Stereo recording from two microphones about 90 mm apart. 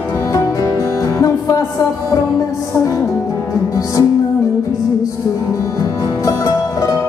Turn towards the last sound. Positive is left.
turn(degrees=35)  # may be behind; listen again after turning